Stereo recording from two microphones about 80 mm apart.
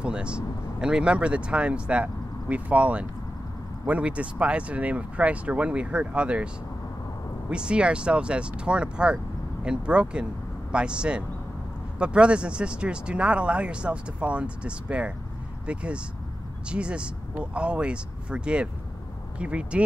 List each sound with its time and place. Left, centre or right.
0.0 s speech: centre